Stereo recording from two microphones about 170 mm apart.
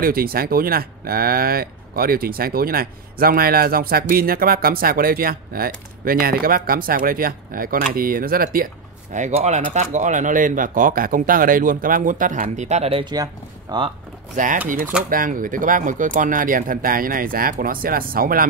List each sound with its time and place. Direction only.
0.0 s speech: 60° right (ahead or behind)
9.1 s speech: 40° right (ahead or behind)
13.1 s speech: 25° right (ahead or behind)
14.3 s speech: 50° right (ahead or behind)